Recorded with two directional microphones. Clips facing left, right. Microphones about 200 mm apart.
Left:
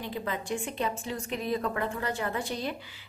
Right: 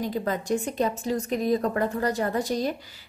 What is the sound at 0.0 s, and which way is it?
A woman's voice, 40° right (ahead or behind).